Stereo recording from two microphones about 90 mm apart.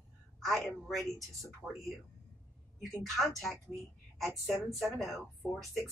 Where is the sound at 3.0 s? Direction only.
Centre (ahead or behind).